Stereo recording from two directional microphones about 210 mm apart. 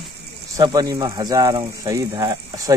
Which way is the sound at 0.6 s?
20° right (ahead or behind).